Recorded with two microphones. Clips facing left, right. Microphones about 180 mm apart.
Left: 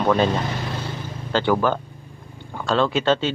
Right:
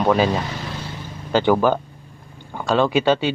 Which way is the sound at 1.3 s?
15° right (ahead or behind).